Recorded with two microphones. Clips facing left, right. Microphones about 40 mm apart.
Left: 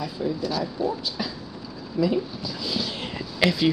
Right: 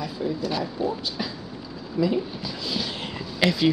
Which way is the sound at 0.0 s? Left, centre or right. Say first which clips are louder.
Even; centre.